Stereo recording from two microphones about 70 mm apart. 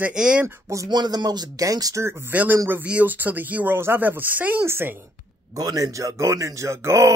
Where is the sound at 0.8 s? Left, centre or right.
Right.